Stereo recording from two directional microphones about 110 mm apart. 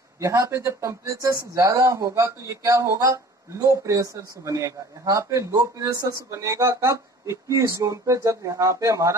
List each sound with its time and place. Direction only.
0.2 s a man's voice: 25° right (ahead or behind)